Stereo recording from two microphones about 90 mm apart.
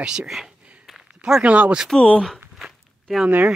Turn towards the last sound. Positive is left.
turn(degrees=0)  # may be behind; listen again after turning